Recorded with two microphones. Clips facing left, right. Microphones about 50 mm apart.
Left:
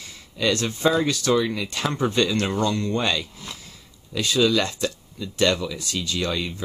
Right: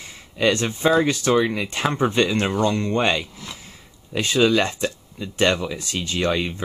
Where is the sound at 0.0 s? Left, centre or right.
Right.